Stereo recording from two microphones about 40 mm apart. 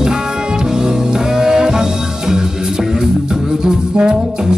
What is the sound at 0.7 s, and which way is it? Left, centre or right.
Music, centre.